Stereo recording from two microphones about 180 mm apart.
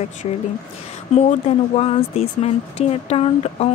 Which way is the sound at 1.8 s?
35° left (ahead or behind).